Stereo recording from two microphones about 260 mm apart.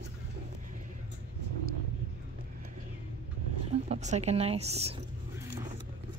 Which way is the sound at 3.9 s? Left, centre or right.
Right.